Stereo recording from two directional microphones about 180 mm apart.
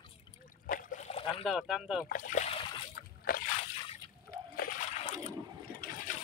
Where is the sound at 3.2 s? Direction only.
50° left (ahead or behind).